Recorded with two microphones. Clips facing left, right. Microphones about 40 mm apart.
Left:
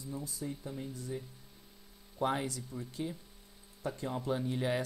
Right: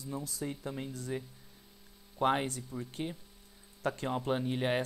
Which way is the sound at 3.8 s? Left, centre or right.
Right.